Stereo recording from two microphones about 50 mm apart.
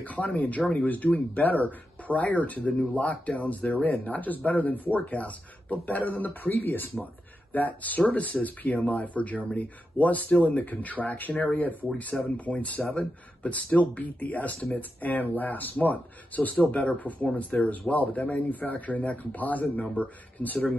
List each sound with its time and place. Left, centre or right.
0.0 s speech: left